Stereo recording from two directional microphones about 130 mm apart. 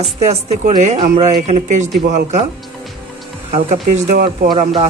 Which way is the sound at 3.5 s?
80° right.